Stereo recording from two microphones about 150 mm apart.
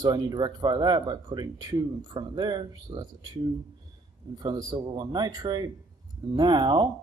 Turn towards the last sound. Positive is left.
turn(degrees=-25)  # may be behind; listen again after turning